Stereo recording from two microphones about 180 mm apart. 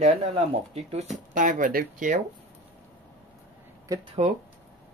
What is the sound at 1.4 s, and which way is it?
Speech, 45° right (ahead or behind).